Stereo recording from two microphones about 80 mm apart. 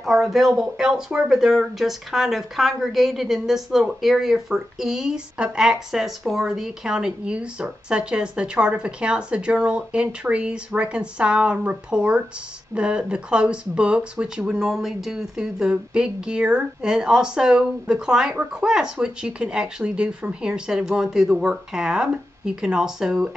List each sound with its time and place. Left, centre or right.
0.0 s speech: centre